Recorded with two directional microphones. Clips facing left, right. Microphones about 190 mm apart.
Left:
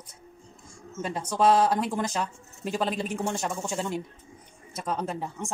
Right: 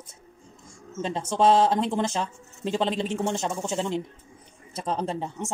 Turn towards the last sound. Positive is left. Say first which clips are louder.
# right 3 dB
turn(degrees=-25)  # may be behind; listen again after turning